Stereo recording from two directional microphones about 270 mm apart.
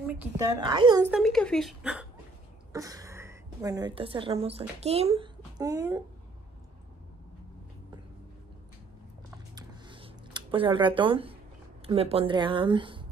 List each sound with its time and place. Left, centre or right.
0.0 s a woman's voice: centre
1.1 s a woman's voice: centre
9.6 s a sound: centre
11.8 s speech: right